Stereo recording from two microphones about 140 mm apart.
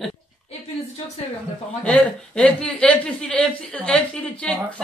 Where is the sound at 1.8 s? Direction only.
5° left (ahead or behind).